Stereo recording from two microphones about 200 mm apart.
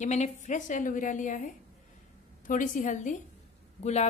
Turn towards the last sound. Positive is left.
turn(degrees=35)  # may be behind; listen again after turning